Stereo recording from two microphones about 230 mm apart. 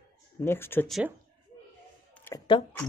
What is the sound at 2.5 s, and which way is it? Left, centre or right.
Speech, centre.